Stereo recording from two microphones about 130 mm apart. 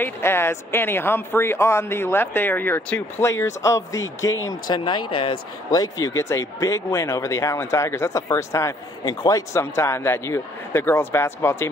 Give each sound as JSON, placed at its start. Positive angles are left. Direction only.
{"t": 0.0, "sound": "speech", "side_deg": 20}
{"t": 5.7, "sound": "speech", "side_deg": 30}